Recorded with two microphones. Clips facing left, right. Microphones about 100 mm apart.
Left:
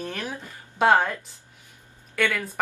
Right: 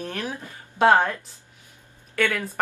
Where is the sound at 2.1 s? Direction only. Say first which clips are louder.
Right 1 dB; centre (ahead or behind).